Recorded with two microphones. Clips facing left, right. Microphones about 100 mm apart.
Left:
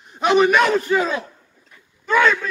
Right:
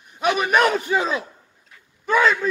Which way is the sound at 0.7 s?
20° right (ahead or behind).